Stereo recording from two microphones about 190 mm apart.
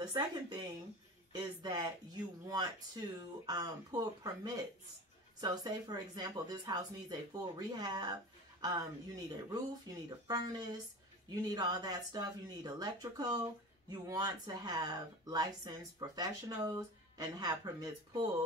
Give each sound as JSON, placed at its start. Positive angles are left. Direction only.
{"t": 0.0, "sound": "speech", "side_deg": -20}